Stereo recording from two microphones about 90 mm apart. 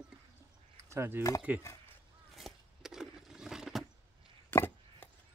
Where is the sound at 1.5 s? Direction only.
15° right (ahead or behind).